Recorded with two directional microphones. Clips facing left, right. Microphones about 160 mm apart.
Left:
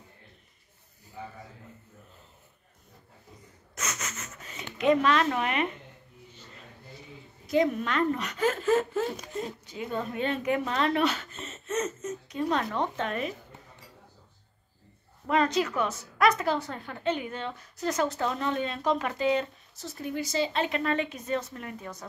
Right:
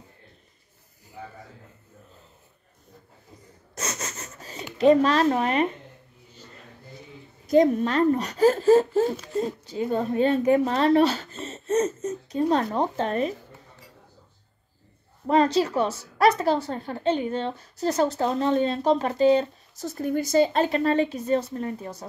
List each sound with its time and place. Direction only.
3.7 s rub: 35° right (ahead or behind)
4.7 s a woman's voice: 35° right (ahead or behind)
7.4 s a woman's voice: 40° right (ahead or behind)
15.2 s a woman's voice: 35° right (ahead or behind)